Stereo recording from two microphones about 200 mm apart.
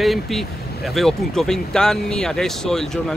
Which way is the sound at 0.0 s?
Centre (ahead or behind).